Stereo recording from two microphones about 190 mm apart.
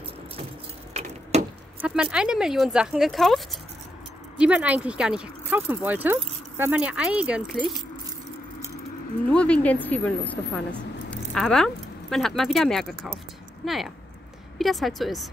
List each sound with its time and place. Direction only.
1.0 s keys jangling: 35° right (ahead or behind)
1.3 s chop: 35° right (ahead or behind)
1.8 s speech: 5° right (ahead or behind)
9.3 s speech: 5° left (ahead or behind)